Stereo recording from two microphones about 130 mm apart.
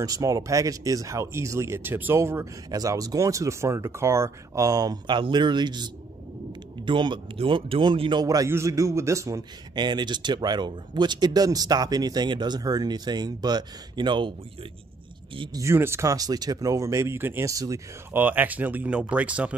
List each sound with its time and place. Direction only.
0.0 s speech: 25° right (ahead or behind)
6.9 s speech: 40° right (ahead or behind); by 9.4 s 25° right (ahead or behind)
9.8 s speech: 35° right (ahead or behind)
15.3 s speech: 40° right (ahead or behind)
15.6 s speech: 20° right (ahead or behind)
18.2 s speech: 15° right (ahead or behind)